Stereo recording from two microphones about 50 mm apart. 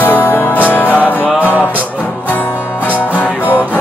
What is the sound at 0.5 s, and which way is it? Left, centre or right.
Music, left.